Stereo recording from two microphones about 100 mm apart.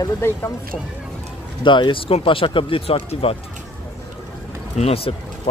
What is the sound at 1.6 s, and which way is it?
Speech, 55° left (ahead or behind).